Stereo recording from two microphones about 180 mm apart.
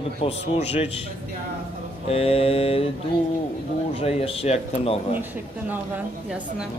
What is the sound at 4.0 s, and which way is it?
A man's voice, 35° left (ahead or behind).